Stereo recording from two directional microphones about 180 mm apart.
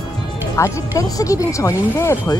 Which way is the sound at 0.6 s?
20° left (ahead or behind).